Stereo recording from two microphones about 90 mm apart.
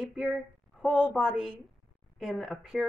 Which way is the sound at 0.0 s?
5° right (ahead or behind).